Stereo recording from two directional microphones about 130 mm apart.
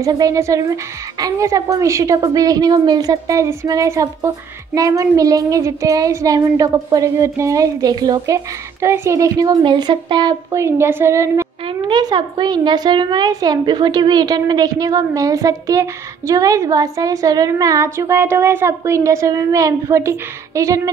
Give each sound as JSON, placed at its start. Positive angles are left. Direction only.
{"t": 0.0, "sound": "a woman's voice", "side_deg": -25}
{"t": 8.8, "sound": "a woman's voice", "side_deg": -20}
{"t": 10.5, "sound": "a woman's voice", "side_deg": -20}
{"t": 11.9, "sound": "a woman's voice", "side_deg": -35}